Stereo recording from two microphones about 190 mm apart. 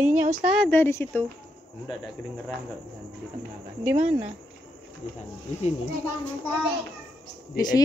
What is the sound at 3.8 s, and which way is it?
Speech, 10° right (ahead or behind).